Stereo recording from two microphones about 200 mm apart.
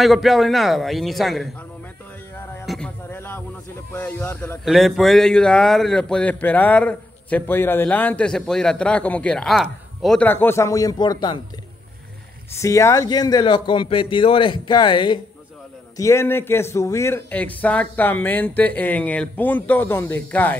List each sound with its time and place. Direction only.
0.0 s a man's voice: centre (ahead or behind)
2.6 s a sound: centre (ahead or behind)
3.9 s a man's voice: 10° left (ahead or behind)
12.5 s a man's voice: 15° left (ahead or behind)